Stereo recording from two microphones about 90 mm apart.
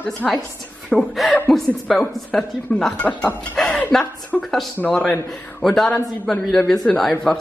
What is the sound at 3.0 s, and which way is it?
A woman's voice, 20° left (ahead or behind).